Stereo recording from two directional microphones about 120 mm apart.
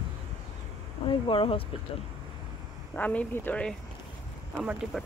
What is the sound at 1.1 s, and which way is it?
Speech, 45° left (ahead or behind).